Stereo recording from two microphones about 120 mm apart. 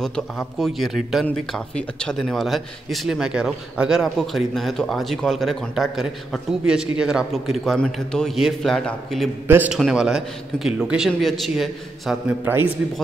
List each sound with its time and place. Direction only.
0.0 s a man's voice: centre (ahead or behind)
12.4 s a man's voice: 15° right (ahead or behind)